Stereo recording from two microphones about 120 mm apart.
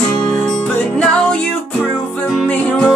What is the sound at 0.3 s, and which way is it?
Music, 5° left (ahead or behind).